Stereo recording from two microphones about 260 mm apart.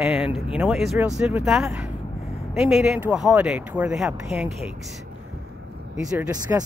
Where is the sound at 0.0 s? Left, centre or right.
Centre.